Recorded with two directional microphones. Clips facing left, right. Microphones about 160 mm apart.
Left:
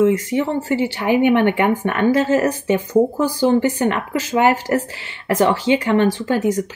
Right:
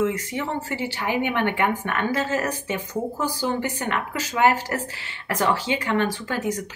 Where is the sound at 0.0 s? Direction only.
25° left (ahead or behind).